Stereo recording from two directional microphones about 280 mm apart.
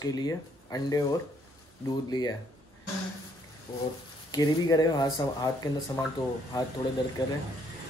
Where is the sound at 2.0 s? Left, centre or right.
Centre.